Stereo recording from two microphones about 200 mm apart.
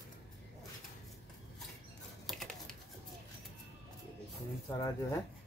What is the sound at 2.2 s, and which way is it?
Typing, centre (ahead or behind).